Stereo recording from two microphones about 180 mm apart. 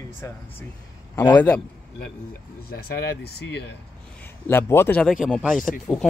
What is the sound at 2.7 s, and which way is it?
Speech, 60° left (ahead or behind).